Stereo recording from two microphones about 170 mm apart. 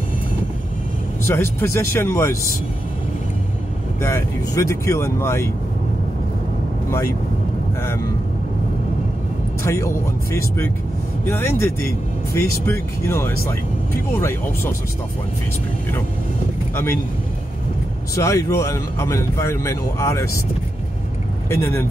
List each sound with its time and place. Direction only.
1.2 s speech: 15° left (ahead or behind)
4.0 s speech: 15° left (ahead or behind)
9.6 s speech: 15° left (ahead or behind)
11.2 s speech: 15° left (ahead or behind)
18.1 s speech: 20° left (ahead or behind)
21.5 s speech: 15° left (ahead or behind)